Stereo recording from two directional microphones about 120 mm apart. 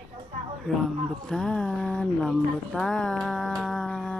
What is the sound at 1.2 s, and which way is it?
Music, 5° left (ahead or behind).